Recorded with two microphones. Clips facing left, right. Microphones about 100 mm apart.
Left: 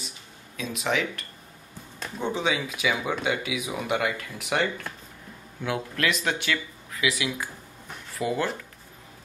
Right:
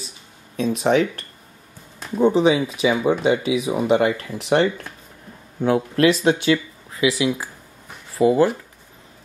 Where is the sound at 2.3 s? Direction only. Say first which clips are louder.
Right 10 dB; 20° right (ahead or behind).